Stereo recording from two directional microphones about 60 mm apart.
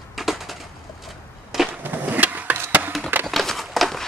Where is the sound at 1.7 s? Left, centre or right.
Right.